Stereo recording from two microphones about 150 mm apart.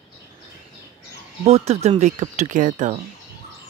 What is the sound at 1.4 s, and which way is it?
Speech, 45° right (ahead or behind).